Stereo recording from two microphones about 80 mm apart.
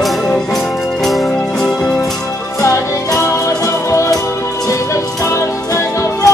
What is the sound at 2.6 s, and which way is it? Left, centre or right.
Music, left.